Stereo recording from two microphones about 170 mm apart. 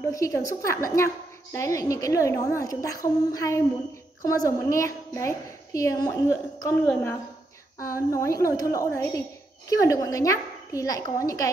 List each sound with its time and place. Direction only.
0.1 s a woman's voice: 20° left (ahead or behind)